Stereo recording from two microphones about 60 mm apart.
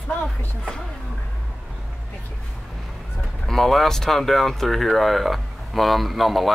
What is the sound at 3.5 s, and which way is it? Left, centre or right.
Speech, centre.